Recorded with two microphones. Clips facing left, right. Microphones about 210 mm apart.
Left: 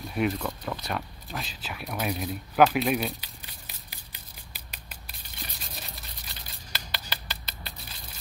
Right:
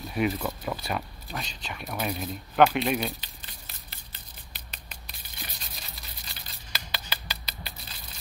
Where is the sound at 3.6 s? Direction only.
10° left (ahead or behind).